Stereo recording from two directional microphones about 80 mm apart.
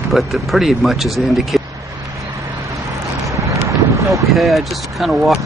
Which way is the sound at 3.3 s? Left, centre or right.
Right.